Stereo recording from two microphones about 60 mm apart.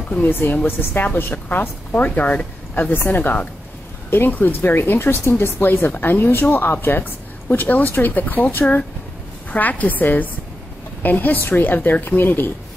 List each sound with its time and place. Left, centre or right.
0.2 s a woman's voice: left